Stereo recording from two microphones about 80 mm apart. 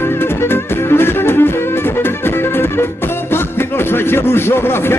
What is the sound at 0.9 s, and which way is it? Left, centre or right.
Music, left.